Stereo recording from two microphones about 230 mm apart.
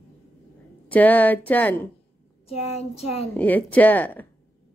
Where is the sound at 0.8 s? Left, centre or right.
Centre.